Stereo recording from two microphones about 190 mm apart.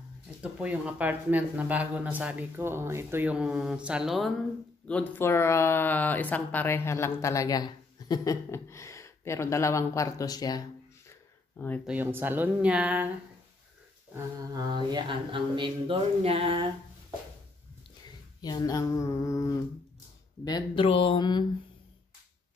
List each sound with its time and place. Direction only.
0.4 s speech: 5° right (ahead or behind); by 10.6 s 20° left (ahead or behind)
11.1 s a sound: 10° left (ahead or behind)
11.8 s speech: 10° right (ahead or behind)
14.1 s mantra: 20° right (ahead or behind)
18.4 s speech: 20° left (ahead or behind)